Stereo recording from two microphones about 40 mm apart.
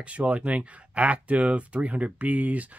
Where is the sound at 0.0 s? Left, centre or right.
Right.